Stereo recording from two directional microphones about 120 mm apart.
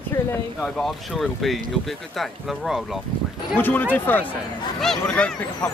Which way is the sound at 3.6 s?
15° left (ahead or behind).